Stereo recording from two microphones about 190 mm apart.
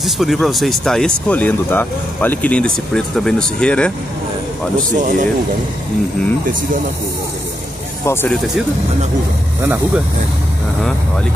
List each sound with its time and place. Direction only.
0.0 s speech: centre (ahead or behind)
4.9 s speech: 45° right (ahead or behind)
8.0 s speech: 15° left (ahead or behind)
9.6 s speech: 10° right (ahead or behind)